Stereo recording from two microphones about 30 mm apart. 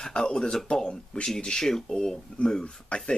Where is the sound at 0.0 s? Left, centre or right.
Left.